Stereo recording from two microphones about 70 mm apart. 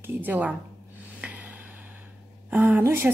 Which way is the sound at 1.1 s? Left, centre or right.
Right.